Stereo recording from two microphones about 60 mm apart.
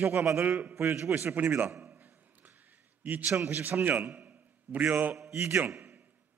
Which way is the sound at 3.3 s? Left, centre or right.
Right.